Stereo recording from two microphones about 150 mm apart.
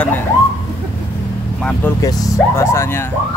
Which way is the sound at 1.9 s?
25° left (ahead or behind).